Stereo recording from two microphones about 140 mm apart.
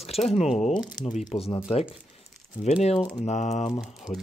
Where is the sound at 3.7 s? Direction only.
5° right (ahead or behind).